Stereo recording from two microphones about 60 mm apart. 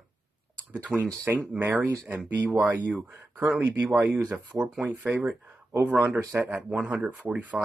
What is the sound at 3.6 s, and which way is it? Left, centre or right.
Speech, right.